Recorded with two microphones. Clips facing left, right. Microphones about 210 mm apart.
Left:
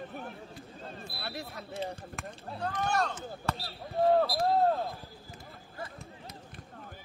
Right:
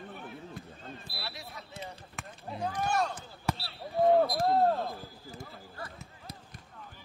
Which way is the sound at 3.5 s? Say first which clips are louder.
Right 2 dB; 15° right (ahead or behind).